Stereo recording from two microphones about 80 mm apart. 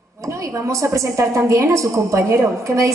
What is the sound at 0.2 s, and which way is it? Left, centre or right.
A man's voice, right.